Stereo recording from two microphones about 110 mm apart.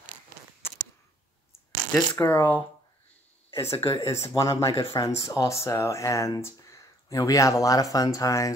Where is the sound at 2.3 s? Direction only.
15° left (ahead or behind).